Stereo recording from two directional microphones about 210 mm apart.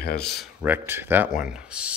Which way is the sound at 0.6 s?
10° right (ahead or behind).